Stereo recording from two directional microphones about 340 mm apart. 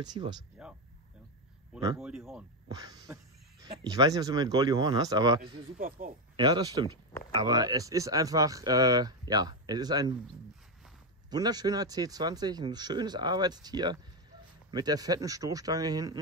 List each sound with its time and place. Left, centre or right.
0.0 s speech: centre
5.5 s speech: right
6.3 s speech: centre
11.2 s speech: centre